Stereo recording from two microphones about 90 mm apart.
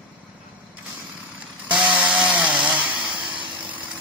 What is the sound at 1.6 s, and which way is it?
Chainsaw, 10° right (ahead or behind).